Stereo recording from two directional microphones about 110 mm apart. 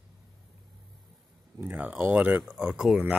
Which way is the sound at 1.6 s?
15° right (ahead or behind).